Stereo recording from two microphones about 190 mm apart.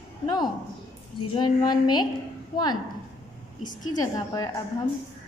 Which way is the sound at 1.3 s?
20° left (ahead or behind).